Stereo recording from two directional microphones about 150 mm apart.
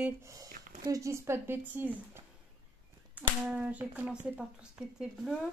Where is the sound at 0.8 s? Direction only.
20° right (ahead or behind); by 5.4 s 5° right (ahead or behind).